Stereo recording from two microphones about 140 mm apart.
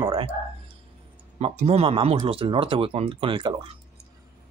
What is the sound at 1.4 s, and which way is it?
Speech, 50° right (ahead or behind).